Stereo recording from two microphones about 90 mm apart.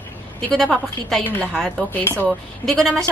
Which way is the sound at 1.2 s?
20° left (ahead or behind).